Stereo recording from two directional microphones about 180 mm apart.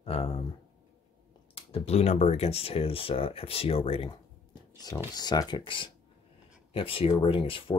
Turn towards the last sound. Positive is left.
turn(degrees=30)  # may be behind; listen again after turning